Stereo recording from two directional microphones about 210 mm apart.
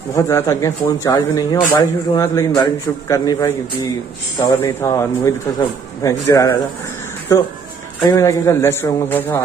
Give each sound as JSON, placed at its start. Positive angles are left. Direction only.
{"t": 0.1, "sound": "speech", "side_deg": 10}
{"t": 8.0, "sound": "speech", "side_deg": 15}